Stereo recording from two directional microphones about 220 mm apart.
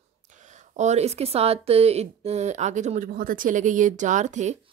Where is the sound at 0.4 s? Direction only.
35° right (ahead or behind).